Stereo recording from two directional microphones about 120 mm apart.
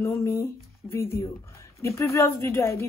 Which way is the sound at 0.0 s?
25° left (ahead or behind).